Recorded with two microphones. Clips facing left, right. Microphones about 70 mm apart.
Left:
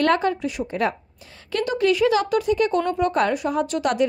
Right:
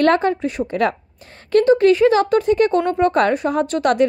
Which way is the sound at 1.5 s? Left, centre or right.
Right.